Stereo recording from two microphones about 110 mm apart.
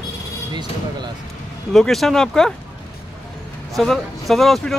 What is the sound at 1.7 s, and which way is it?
Speech, 5° left (ahead or behind).